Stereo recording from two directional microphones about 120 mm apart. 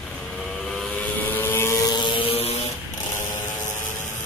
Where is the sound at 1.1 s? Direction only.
15° left (ahead or behind).